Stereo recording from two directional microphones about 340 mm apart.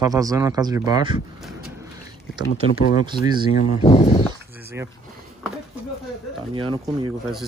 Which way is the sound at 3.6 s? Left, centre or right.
Centre.